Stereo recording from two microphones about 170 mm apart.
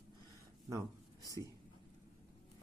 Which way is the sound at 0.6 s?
20° right (ahead or behind).